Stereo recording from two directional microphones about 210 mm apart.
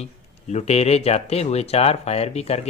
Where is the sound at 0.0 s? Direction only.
30° left (ahead or behind).